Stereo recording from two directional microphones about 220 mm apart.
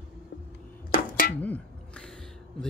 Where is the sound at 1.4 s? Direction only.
5° left (ahead or behind).